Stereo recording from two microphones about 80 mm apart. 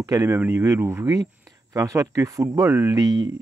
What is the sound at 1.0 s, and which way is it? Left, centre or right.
Speech, right.